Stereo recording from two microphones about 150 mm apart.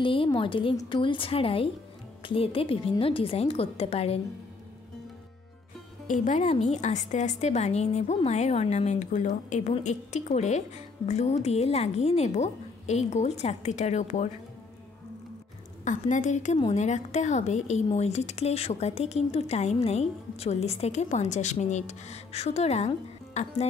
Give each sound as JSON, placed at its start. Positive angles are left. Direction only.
{"t": 0.0, "sound": "a woman's voice", "side_deg": 35}
{"t": 6.0, "sound": "speech", "side_deg": 55}
{"t": 15.8, "sound": "a woman's voice", "side_deg": 55}